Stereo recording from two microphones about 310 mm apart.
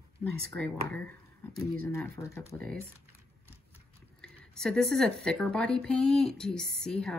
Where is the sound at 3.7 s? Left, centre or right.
Centre.